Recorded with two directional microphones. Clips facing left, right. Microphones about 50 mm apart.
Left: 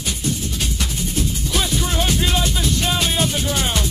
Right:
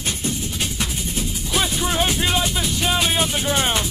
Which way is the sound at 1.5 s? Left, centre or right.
Centre.